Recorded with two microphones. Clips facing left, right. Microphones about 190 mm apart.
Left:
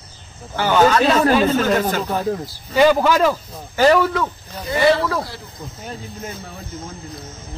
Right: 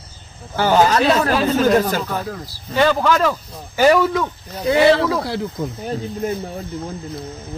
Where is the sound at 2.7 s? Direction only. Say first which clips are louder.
Left 2 dB; 10° left (ahead or behind).